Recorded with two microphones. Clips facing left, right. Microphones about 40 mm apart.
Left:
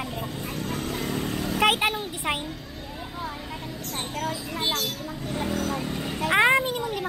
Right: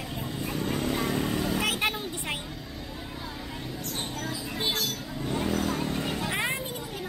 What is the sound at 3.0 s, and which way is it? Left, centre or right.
Vehicle, left.